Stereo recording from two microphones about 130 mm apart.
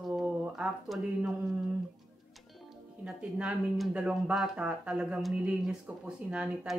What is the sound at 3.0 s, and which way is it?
Speech, 5° right (ahead or behind).